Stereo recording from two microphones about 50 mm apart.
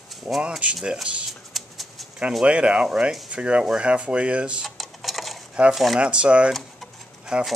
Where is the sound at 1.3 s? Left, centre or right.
Centre.